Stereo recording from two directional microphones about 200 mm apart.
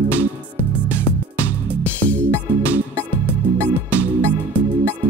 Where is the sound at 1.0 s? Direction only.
10° left (ahead or behind).